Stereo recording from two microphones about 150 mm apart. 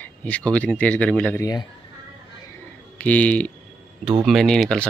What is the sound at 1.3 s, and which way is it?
Speech, 25° left (ahead or behind).